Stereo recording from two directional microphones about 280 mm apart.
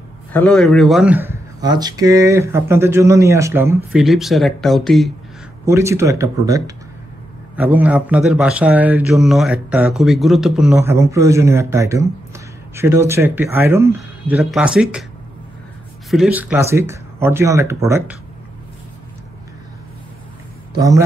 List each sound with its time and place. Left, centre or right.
0.3 s speech: centre
5.7 s a man's voice: centre
16.1 s speech: centre
20.7 s a man's voice: centre